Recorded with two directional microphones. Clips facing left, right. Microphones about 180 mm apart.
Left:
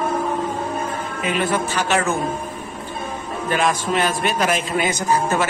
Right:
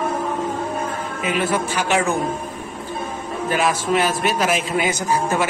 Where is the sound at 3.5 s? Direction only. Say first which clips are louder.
Right 1 dB; 5° right (ahead or behind).